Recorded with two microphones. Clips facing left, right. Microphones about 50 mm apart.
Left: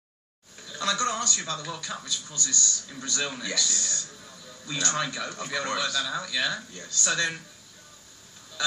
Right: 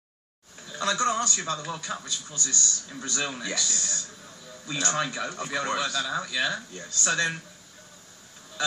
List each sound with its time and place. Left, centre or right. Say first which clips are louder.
0.7 s speech: right 2 dB; centre